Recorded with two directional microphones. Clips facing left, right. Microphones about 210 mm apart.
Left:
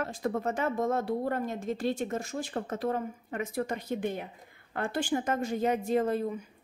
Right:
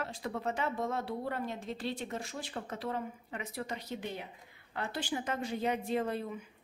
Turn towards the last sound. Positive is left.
turn(degrees=40)  # may be behind; listen again after turning